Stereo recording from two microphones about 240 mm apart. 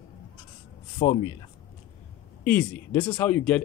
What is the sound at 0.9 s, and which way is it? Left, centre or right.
Speech, centre.